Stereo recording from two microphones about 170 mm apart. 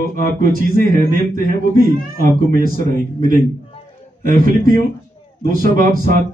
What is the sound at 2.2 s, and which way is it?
A man's voice, 55° right (ahead or behind).